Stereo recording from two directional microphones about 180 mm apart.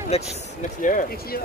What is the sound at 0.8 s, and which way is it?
Speech, 45° left (ahead or behind).